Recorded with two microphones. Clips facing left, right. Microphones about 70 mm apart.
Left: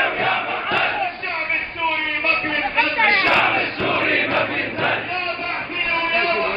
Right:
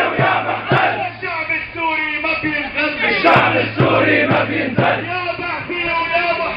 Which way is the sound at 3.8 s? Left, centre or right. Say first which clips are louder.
Right 8 dB; right.